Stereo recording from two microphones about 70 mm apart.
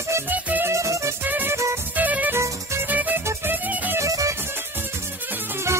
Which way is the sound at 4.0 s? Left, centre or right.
Right.